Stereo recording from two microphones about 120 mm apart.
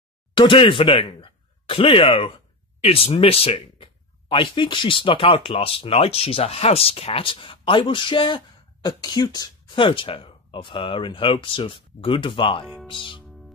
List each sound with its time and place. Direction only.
0.3 s speech: 45° left (ahead or behind)